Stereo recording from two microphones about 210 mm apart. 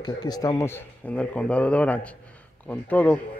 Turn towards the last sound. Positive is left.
turn(degrees=5)  # may be behind; listen again after turning